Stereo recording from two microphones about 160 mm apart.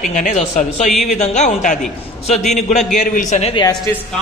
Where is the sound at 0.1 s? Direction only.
50° left (ahead or behind).